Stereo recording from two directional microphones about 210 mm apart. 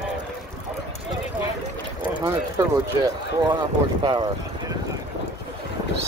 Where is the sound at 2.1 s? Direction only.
15° right (ahead or behind).